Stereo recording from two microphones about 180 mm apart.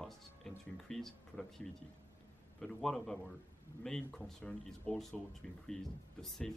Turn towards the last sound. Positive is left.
turn(degrees=0)  # may be behind; listen again after turning